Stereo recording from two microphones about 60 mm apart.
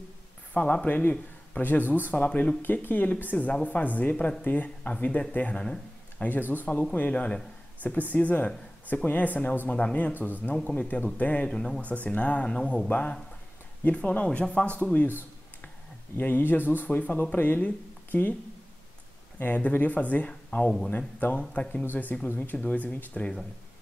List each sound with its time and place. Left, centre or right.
0.6 s speech: left
5.6 s a sound: centre
6.5 s speech: left
11.8 s speech: left
16.2 s speech: left
19.3 s speech: left